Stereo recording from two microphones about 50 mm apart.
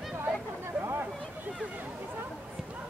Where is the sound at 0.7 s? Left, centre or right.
Right.